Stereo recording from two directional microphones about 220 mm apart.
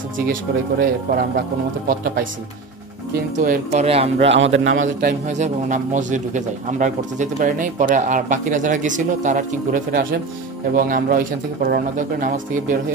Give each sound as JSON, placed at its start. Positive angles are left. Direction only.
{"t": 0.3, "sound": "a man's voice", "side_deg": -40}
{"t": 3.4, "sound": "a man's voice", "side_deg": -40}
{"t": 3.8, "sound": "speech", "side_deg": -25}
{"t": 4.3, "sound": "a man's voice", "side_deg": -60}
{"t": 4.8, "sound": "a man's voice", "side_deg": -35}